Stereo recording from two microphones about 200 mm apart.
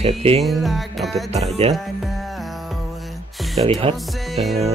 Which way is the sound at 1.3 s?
30° right (ahead or behind).